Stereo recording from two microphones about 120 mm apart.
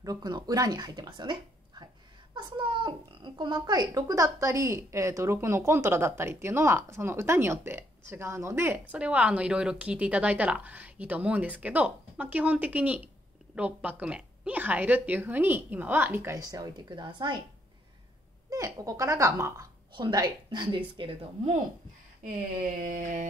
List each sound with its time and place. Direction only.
0.0 s speech: 35° right (ahead or behind)
8.9 s a woman's voice: 10° right (ahead or behind)
16.3 s a woman's voice: 30° right (ahead or behind)
18.5 s speech: 30° right (ahead or behind)
19.9 s a woman's voice: 40° right (ahead or behind)
22.2 s a sound: 90° right